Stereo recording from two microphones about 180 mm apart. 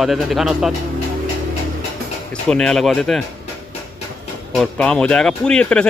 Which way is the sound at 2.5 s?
5° left (ahead or behind).